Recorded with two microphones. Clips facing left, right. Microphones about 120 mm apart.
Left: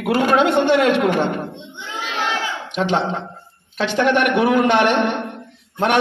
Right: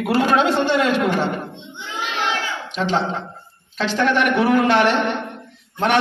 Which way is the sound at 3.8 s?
60° left (ahead or behind).